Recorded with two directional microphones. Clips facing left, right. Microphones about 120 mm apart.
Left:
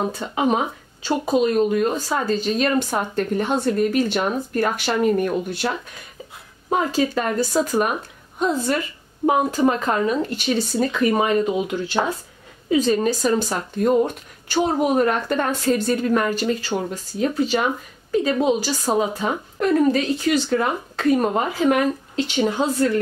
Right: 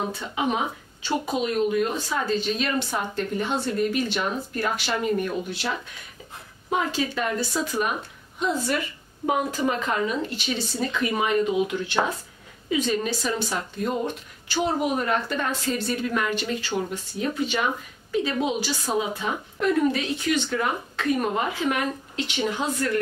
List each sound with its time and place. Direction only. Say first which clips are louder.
0.1 s speech: left 5 dB; 40° left (ahead or behind)
6.7 s speech: left 5 dB; 40° left (ahead or behind)
9.2 s speech: left 6 dB; 35° left (ahead or behind)
12.6 s speech: left 6 dB; 35° left (ahead or behind)